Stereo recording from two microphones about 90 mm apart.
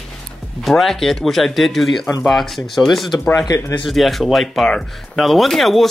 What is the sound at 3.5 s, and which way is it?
Speech, 35° left (ahead or behind).